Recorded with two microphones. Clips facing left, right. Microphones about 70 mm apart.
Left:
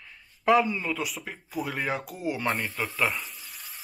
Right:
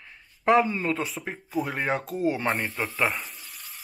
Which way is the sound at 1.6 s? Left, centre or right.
Centre.